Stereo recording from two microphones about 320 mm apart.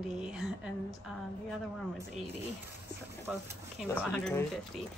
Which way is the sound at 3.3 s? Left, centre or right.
Centre.